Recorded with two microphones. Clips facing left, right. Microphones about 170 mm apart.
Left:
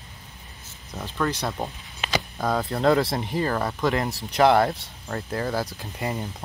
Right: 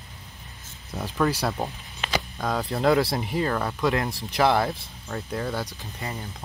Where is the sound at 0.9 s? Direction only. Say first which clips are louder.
Right 2 dB; 5° right (ahead or behind).